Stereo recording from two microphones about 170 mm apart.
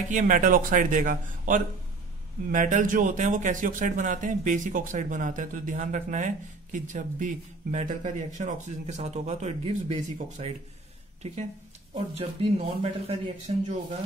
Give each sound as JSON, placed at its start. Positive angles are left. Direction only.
{"t": 0.1, "sound": "speech", "side_deg": -50}